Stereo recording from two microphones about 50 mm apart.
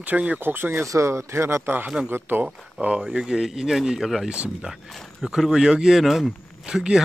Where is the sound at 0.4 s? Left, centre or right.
Right.